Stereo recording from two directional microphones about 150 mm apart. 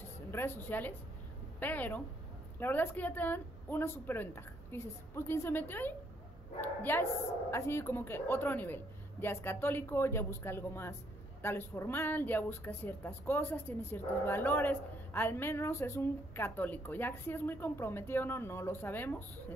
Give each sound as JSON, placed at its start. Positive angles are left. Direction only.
{"t": 0.3, "sound": "speech", "side_deg": 15}